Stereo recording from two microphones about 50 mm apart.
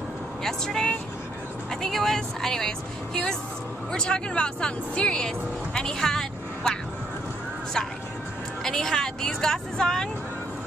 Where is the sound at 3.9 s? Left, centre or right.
Centre.